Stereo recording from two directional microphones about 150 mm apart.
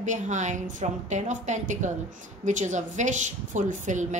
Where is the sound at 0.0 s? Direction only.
55° right (ahead or behind).